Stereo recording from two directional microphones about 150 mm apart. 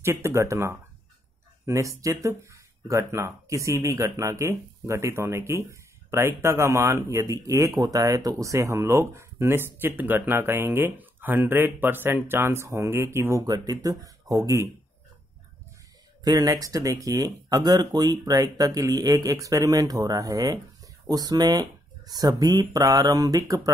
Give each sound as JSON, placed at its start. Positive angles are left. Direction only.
{"t": 0.0, "sound": "speech", "side_deg": -20}
{"t": 16.3, "sound": "speech", "side_deg": -25}